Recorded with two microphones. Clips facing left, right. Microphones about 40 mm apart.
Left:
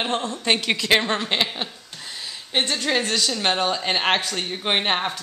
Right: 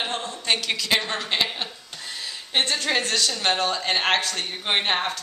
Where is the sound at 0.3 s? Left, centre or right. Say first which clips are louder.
Left 3 dB; left.